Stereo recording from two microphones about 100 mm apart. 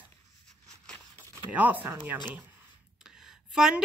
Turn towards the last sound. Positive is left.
turn(degrees=-5)  # may be behind; listen again after turning